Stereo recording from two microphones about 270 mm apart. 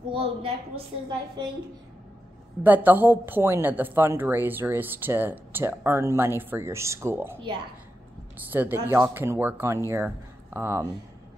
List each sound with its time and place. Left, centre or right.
0.1 s a woman's voice: centre
2.6 s a woman's voice: centre